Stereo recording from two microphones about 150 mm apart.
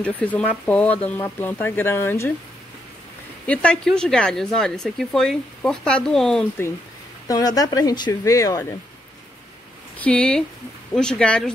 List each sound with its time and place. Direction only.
0.0 s speech: 10° left (ahead or behind)
3.4 s a woman's voice: 5° left (ahead or behind)
7.2 s speech: 25° left (ahead or behind)
9.9 s a woman's voice: 10° left (ahead or behind)